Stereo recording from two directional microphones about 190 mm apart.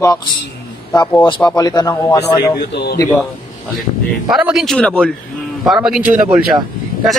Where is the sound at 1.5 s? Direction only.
20° left (ahead or behind).